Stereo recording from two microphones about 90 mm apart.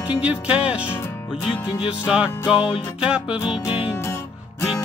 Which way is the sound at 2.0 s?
10° right (ahead or behind).